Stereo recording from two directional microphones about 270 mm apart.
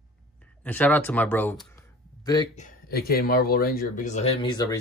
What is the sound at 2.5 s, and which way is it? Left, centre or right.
Speech, left.